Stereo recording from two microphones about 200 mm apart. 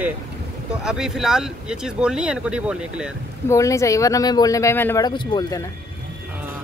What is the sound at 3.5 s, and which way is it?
Speech, 15° left (ahead or behind).